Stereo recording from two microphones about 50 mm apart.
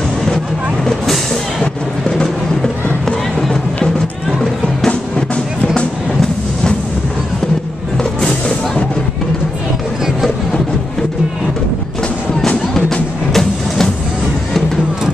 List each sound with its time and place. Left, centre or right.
1.0 s music: centre
8.0 s music: centre
12.7 s music: centre